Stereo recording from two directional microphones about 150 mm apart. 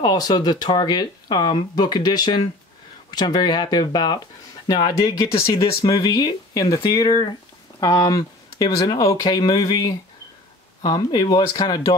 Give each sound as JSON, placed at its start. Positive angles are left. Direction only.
{"t": 0.0, "sound": "speech", "side_deg": 25}